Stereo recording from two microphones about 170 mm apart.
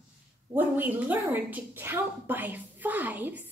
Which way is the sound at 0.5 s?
10° right (ahead or behind).